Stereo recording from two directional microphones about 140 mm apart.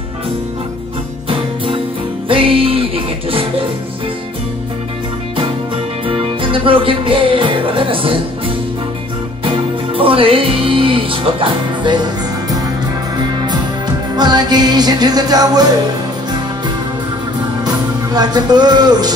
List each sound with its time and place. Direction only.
2.2 s music: 40° right (ahead or behind)
6.0 s music: 40° right (ahead or behind)
9.9 s music: 40° right (ahead or behind)
14.1 s music: 30° right (ahead or behind)
18.1 s music: 30° right (ahead or behind)